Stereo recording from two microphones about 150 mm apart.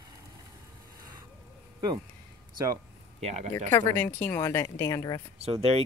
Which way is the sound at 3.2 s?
45° right (ahead or behind).